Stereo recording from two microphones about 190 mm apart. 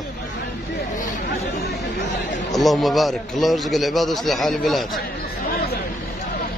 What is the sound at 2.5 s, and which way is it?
A man's voice, centre (ahead or behind).